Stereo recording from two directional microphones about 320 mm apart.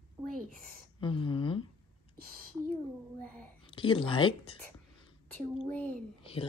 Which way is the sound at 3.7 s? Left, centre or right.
Centre.